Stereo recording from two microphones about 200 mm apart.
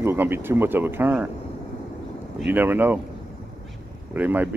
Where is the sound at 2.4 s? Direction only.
10° right (ahead or behind).